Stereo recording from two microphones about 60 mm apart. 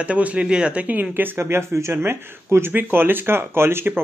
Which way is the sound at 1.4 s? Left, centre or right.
Right.